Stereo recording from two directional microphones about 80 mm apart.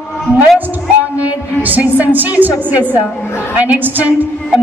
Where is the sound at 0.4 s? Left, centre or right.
Right.